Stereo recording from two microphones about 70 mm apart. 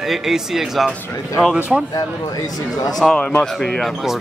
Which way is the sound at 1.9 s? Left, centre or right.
Left.